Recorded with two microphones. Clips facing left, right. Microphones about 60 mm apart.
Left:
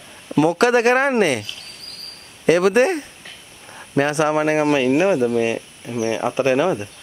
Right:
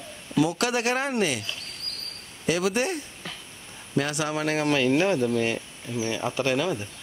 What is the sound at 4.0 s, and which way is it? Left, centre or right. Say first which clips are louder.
Speech: left 9 dB; left.